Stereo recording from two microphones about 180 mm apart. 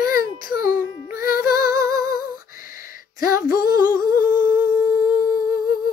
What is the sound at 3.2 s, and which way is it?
Music, 50° left (ahead or behind).